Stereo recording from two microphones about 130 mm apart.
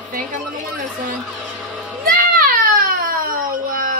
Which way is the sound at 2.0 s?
90° right.